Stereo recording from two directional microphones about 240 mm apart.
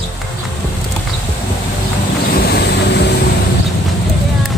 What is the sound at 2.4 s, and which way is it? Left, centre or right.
Boat, left.